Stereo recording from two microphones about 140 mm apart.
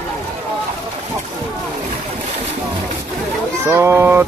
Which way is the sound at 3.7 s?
15° right (ahead or behind).